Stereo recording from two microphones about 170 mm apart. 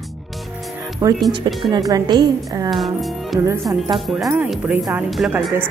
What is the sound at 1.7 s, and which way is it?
Speech, 25° right (ahead or behind).